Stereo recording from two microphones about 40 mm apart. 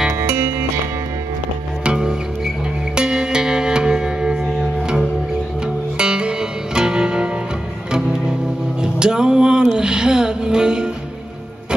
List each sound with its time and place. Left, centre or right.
1.9 s music: centre
5.9 s music: right
9.0 s a sound: centre
9.7 s music: centre